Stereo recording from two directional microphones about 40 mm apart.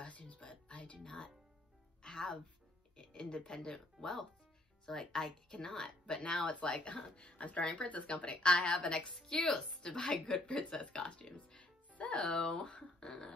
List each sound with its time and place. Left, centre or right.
0.0 s music: left
3.0 s speech: left